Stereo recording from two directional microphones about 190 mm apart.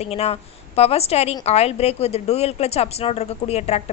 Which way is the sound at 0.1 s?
30° left (ahead or behind).